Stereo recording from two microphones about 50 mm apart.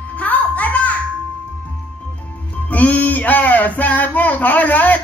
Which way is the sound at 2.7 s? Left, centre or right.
Left.